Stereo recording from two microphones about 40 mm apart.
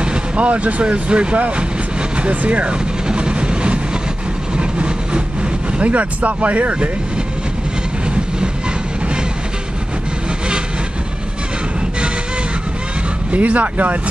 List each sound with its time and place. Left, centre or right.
0.0 s speech: right
3.1 s train: right
5.7 s speech: right
13.3 s speech: right